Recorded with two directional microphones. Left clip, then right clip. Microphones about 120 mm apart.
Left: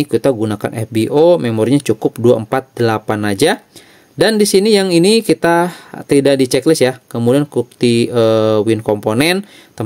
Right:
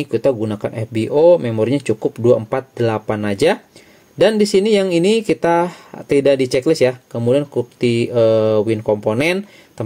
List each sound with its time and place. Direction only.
0.0 s speech: 50° left (ahead or behind)